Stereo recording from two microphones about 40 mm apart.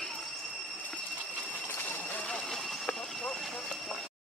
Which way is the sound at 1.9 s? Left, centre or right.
Left.